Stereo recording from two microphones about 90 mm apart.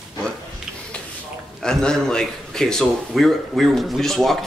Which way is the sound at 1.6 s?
10° left (ahead or behind).